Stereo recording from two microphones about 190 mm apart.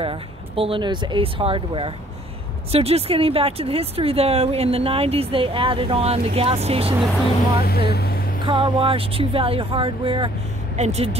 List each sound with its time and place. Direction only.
0.0 s speech: 30° right (ahead or behind)
7.6 s speech: 55° left (ahead or behind)
8.5 s speech: 25° right (ahead or behind)